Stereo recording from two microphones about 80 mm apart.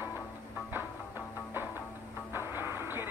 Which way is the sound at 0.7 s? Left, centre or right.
Right.